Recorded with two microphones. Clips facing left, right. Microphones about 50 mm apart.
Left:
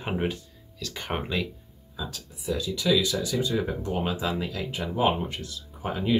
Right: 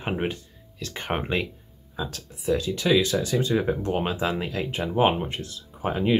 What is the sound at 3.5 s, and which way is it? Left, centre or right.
Speech, right.